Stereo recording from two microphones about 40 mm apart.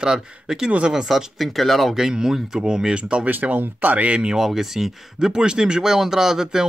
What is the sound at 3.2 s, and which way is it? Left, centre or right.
Speech, right.